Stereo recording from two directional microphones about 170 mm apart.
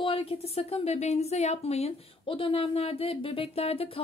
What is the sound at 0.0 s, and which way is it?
Speech, 35° left (ahead or behind).